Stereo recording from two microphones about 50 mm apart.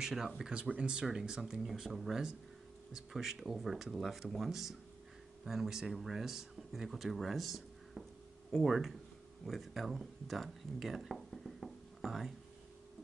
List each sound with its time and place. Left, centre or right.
0.0 s speech: centre